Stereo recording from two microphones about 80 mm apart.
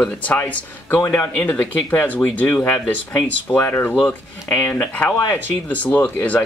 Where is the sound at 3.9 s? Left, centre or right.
Centre.